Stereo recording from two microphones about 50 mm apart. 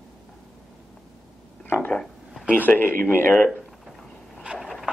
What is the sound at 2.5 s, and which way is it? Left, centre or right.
Speech, left.